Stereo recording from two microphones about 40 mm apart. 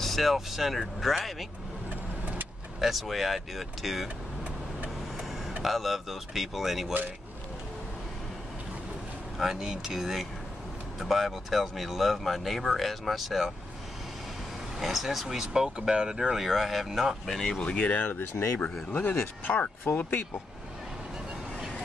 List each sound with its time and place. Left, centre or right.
0.0 s speech: centre
2.8 s speech: centre
5.6 s speech: centre
9.4 s speech: centre
14.8 s speech: centre
17.3 s speech: centre
17.6 s speech: left
18.1 s speech: left
19.0 s speech: left